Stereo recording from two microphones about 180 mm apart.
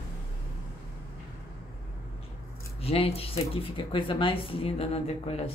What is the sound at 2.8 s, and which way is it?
Speech, 35° left (ahead or behind).